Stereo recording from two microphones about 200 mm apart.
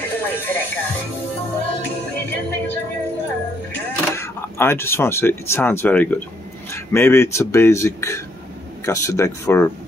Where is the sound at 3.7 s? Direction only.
15° left (ahead or behind).